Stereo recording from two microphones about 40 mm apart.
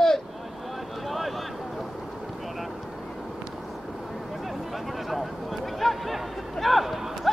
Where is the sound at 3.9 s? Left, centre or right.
Centre.